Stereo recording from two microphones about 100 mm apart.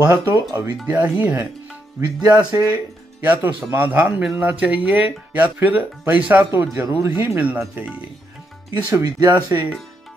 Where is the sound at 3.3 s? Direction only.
20° right (ahead or behind).